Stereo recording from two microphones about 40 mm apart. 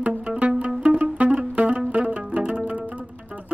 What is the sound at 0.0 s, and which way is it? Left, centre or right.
Music, right.